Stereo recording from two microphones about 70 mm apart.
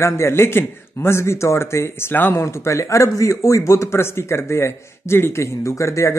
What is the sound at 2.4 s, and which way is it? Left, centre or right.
Speech, left.